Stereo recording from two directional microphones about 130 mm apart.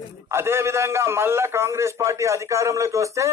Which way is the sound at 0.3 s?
20° right (ahead or behind).